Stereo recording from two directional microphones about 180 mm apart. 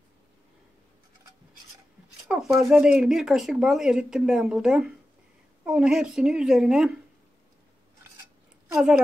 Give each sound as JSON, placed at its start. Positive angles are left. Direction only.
{"t": 2.2, "sound": "speech", "side_deg": -5}
{"t": 8.7, "sound": "a woman's voice", "side_deg": -5}